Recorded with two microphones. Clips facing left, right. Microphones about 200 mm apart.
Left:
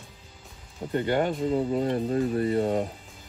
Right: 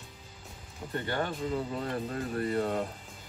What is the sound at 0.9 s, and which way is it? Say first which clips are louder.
Speech: left 8 dB; 20° left (ahead or behind).